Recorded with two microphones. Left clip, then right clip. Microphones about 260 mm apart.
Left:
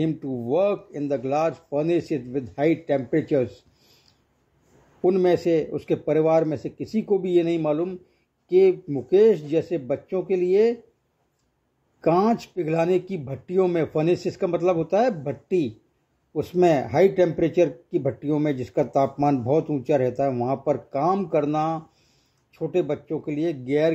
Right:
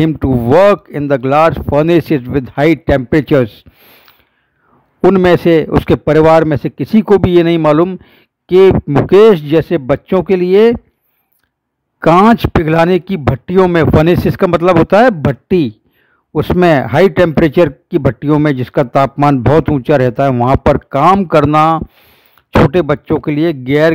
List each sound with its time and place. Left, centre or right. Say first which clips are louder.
0.0 s a man's voice: right 14 dB; right
5.0 s a man's voice: right 12 dB; right
12.0 s a man's voice: right 13 dB; right